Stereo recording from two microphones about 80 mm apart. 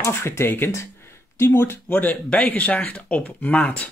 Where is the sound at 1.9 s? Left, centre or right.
Left.